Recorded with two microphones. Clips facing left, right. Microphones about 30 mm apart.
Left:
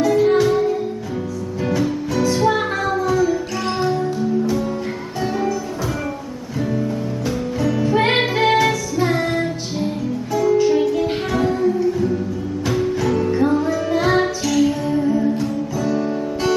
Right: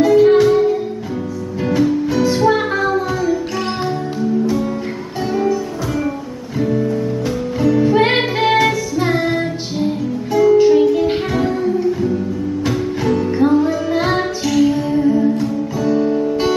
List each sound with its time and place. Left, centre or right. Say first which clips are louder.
0.0 s music: right 5 dB; centre
6.6 s music: right 5 dB; centre
10.3 s music: right 5 dB; centre
10.7 s music: right 5 dB; centre
15.3 s guitar: right 3 dB; centre